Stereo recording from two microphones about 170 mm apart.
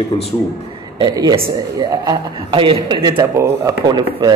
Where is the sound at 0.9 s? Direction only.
25° right (ahead or behind).